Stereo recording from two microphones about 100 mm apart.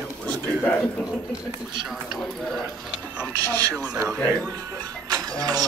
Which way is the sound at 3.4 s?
40° right (ahead or behind).